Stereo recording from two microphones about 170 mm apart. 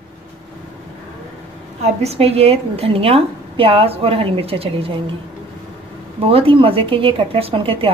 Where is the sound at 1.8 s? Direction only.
40° right (ahead or behind).